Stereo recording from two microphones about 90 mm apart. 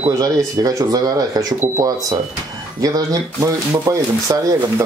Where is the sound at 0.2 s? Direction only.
40° right (ahead or behind).